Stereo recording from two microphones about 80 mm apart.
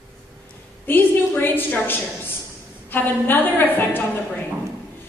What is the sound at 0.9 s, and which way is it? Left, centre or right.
A woman's voice, left.